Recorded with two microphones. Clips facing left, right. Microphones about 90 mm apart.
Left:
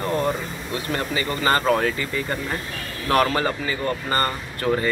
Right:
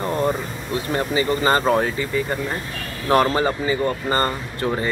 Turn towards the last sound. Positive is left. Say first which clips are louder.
# left 1 dB
turn(degrees=-20)  # may be behind; listen again after turning